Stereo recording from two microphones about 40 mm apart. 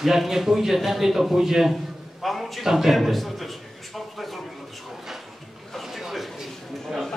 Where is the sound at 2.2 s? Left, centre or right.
Centre.